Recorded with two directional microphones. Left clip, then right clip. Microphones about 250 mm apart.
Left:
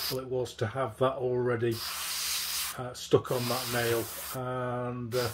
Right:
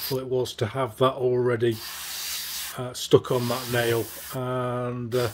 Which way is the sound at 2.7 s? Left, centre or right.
Right.